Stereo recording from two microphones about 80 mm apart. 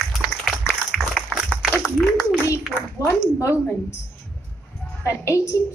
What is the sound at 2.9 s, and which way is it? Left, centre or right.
A woman's voice, left.